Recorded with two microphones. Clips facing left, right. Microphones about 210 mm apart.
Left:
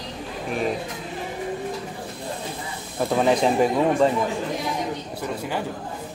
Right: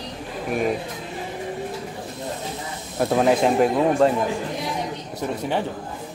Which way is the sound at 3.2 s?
5° right (ahead or behind).